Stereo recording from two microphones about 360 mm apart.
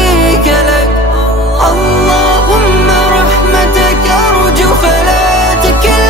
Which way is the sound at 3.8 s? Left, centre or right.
Centre.